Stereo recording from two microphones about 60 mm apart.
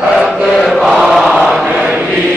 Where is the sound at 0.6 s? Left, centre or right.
Centre.